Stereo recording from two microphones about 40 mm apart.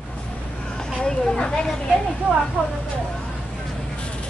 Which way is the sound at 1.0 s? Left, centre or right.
Centre.